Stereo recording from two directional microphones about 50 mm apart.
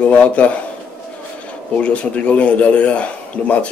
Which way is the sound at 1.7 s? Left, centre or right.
Left.